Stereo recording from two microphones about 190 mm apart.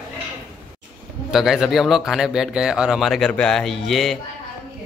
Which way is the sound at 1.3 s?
Centre (ahead or behind).